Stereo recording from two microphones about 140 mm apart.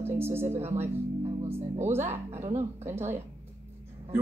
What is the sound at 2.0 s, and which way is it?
Speech, 55° right (ahead or behind).